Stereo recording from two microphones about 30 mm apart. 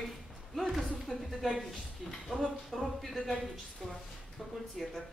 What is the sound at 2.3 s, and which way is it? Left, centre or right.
Speech, right.